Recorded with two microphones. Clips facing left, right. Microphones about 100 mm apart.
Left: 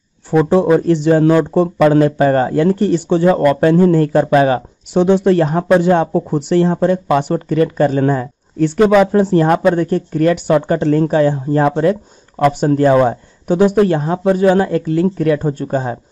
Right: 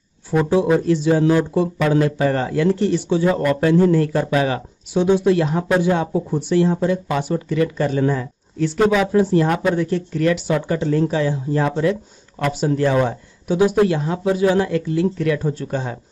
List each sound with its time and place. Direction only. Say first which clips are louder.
0.5 s speech: left 4 dB; 55° left (ahead or behind)
4.9 s speech: left 4 dB; 65° left (ahead or behind); by 16.0 s 40° left (ahead or behind)